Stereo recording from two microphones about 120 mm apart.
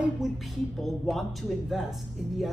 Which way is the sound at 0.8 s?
Centre (ahead or behind).